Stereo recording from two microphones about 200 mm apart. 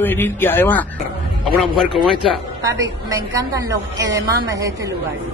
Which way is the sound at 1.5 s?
5° right (ahead or behind).